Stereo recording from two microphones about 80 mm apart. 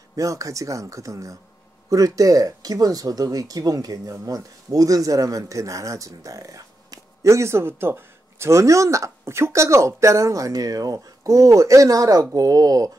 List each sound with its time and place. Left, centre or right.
0.1 s speech: right